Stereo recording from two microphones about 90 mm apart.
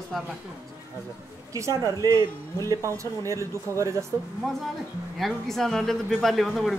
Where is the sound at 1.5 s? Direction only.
40° right (ahead or behind).